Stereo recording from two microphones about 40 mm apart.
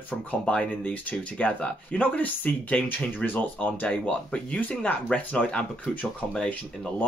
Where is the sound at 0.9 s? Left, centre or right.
Left.